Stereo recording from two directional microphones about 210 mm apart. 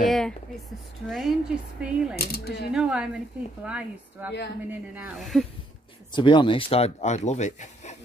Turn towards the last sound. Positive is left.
turn(degrees=35)  # may be behind; listen again after turning